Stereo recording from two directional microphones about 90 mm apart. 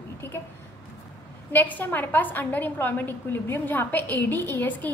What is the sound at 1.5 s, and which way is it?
A woman's voice, 20° left (ahead or behind).